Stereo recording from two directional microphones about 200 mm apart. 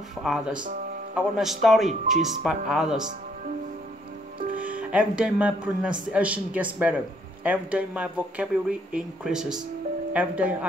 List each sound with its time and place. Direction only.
0.2 s speech: centre (ahead or behind)
4.4 s music: 40° right (ahead or behind)
4.6 s music: 5° right (ahead or behind)
6.1 s speech: 5° right (ahead or behind)